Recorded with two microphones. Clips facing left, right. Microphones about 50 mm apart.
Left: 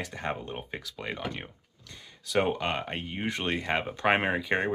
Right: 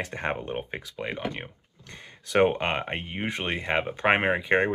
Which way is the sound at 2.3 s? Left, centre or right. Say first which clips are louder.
Right 5 dB; right.